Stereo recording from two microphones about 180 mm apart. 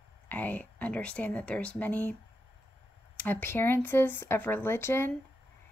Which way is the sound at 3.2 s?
10° left (ahead or behind).